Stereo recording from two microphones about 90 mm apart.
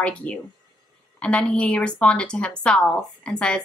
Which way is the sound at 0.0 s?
15° left (ahead or behind).